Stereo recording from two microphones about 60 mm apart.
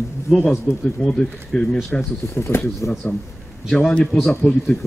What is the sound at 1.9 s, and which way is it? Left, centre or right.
Speech, left.